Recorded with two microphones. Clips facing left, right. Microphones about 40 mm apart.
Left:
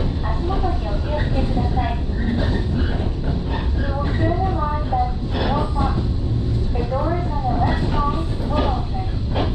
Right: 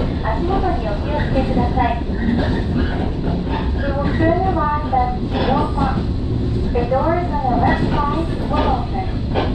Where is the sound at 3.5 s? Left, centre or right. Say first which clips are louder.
Right 4 dB; right.